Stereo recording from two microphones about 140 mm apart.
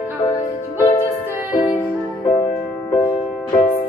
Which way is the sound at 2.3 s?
25° left (ahead or behind).